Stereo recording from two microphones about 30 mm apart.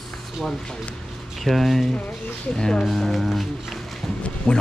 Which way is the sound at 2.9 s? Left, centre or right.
Centre.